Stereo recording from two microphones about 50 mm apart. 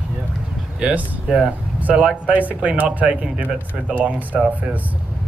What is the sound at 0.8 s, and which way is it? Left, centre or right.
Speech, right.